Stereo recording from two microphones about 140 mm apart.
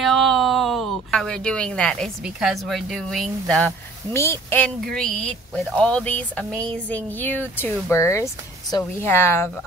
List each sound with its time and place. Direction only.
0.0 s a sound: centre (ahead or behind)
2.2 s speech: centre (ahead or behind)
4.1 s speech: 20° left (ahead or behind)
4.6 s speech: 5° left (ahead or behind)